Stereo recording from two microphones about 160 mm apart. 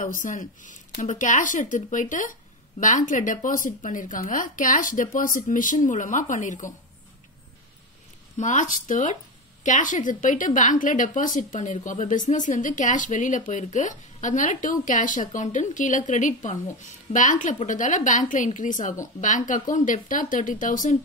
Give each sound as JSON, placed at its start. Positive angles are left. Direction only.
{"t": 0.0, "sound": "a woman's voice", "side_deg": 55}
{"t": 8.4, "sound": "a woman's voice", "side_deg": 50}